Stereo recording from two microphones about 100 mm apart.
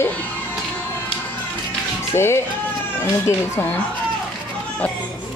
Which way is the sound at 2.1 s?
25° left (ahead or behind).